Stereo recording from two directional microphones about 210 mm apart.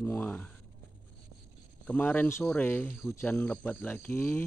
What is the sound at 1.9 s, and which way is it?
Speech, 10° left (ahead or behind).